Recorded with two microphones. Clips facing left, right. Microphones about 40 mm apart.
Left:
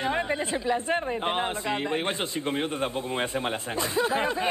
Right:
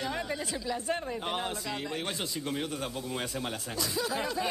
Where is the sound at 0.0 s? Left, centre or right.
Left.